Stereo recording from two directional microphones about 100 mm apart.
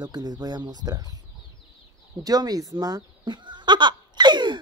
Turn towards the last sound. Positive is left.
turn(degrees=-50)  # may be behind; listen again after turning